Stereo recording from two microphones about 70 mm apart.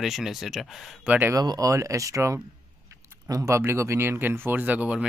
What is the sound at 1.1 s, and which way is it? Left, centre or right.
Speech, centre.